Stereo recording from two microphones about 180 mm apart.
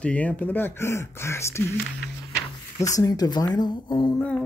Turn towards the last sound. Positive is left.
turn(degrees=5)  # may be behind; listen again after turning